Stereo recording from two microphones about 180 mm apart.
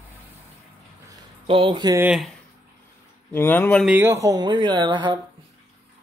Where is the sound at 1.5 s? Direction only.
30° right (ahead or behind).